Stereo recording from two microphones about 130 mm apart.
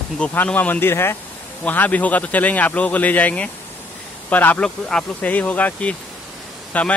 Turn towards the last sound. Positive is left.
turn(degrees=10)  # may be behind; listen again after turning